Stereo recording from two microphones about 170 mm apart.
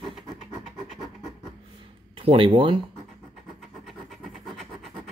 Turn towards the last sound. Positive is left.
turn(degrees=0)  # may be behind; listen again after turning